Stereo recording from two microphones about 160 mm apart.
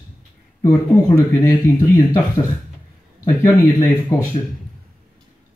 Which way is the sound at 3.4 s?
25° left (ahead or behind).